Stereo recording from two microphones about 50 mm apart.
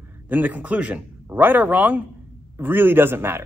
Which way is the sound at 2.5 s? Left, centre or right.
Right.